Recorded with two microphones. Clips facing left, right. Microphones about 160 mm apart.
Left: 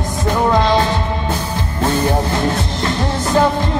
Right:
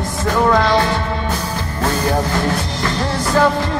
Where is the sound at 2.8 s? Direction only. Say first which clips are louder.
Left 1 dB; 20° left (ahead or behind).